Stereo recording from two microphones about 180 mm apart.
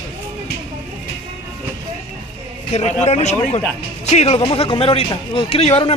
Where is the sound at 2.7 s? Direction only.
35° left (ahead or behind).